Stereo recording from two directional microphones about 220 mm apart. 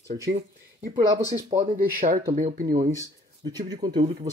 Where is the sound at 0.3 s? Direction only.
40° right (ahead or behind).